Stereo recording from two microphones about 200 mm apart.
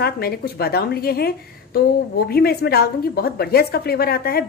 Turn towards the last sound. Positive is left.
turn(degrees=50)  # may be behind; listen again after turning